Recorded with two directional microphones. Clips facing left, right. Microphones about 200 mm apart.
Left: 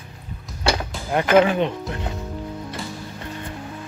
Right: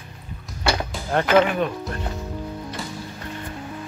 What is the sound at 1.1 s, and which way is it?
Speech, 15° left (ahead or behind).